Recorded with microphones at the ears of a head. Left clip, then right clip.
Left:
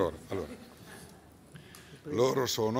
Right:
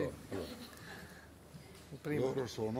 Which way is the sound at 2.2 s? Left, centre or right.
Left.